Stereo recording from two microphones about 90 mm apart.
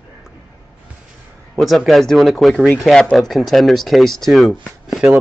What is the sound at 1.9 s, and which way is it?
Speech, centre (ahead or behind).